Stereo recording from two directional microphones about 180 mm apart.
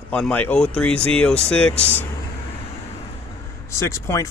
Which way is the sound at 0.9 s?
35° right (ahead or behind).